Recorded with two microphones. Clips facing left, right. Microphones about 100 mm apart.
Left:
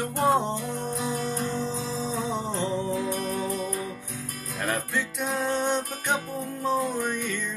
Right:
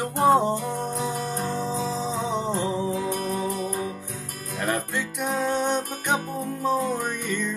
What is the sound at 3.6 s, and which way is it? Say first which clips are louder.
Music: right 2 dB; 35° right (ahead or behind).